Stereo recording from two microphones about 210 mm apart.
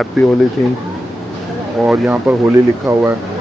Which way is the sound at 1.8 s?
5° right (ahead or behind).